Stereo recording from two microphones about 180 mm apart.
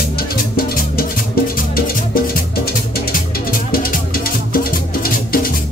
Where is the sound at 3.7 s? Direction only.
55° left (ahead or behind).